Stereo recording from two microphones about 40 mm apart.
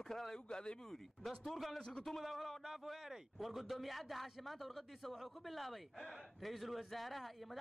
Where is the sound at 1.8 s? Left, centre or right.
Left.